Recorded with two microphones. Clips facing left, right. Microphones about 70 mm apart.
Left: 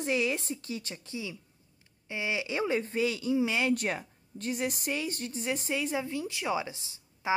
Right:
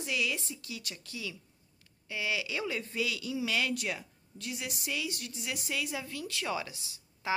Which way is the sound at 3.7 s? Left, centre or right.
Left.